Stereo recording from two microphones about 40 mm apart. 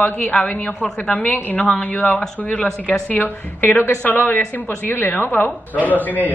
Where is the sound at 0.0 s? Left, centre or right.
Left.